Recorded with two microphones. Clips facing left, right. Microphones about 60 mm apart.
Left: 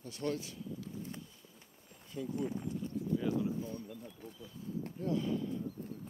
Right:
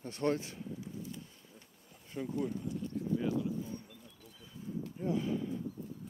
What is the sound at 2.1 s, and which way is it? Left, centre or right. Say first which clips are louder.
Speech: right 2 dB; right.